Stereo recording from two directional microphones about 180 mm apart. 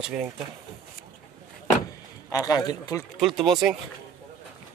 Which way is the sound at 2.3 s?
20° left (ahead or behind).